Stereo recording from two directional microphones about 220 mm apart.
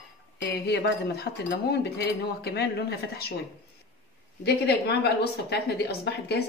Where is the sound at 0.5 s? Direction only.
50° left (ahead or behind).